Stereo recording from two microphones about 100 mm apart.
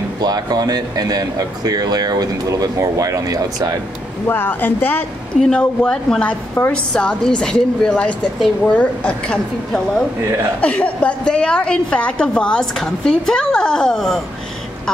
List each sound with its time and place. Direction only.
0.2 s speech: 40° right (ahead or behind)
4.3 s a woman's voice: 20° left (ahead or behind); by 14.2 s 5° left (ahead or behind)